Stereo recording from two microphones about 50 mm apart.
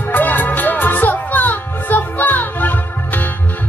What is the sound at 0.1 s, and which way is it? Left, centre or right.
Music, left.